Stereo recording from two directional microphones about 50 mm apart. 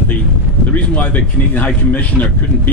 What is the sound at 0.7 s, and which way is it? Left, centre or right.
Speech, left.